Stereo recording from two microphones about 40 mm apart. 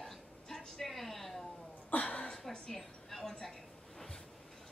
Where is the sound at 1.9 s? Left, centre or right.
Left.